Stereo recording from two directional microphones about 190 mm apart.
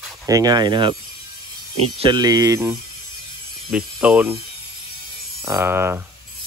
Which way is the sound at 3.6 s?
5° right (ahead or behind).